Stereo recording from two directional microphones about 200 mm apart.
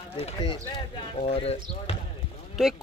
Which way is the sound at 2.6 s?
Centre (ahead or behind).